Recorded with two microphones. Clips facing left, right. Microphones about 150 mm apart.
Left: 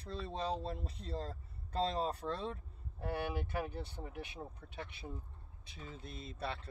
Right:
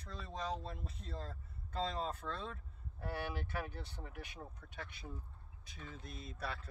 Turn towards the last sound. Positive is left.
turn(degrees=25)  # may be behind; listen again after turning